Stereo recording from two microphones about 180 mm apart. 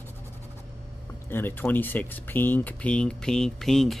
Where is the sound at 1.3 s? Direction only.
10° left (ahead or behind).